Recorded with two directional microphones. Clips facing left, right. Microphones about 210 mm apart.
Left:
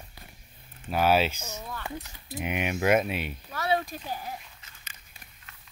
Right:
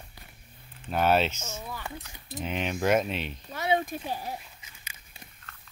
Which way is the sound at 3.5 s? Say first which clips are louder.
Right 1 dB; 20° right (ahead or behind).